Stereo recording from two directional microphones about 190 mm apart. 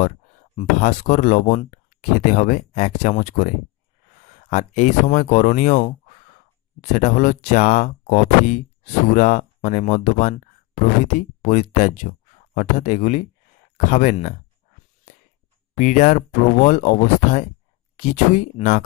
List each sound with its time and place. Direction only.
0.6 s speech: 40° left (ahead or behind)
15.7 s speech: 40° left (ahead or behind)